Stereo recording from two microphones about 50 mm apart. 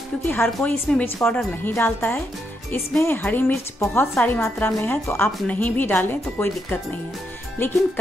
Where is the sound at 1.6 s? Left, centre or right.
Left.